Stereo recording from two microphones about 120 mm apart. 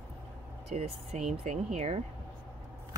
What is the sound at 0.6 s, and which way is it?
Speech, 65° right (ahead or behind).